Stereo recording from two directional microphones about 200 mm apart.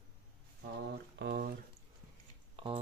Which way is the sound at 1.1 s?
55° right (ahead or behind).